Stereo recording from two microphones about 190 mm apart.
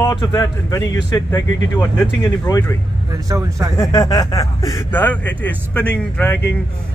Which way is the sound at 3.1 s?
15° right (ahead or behind).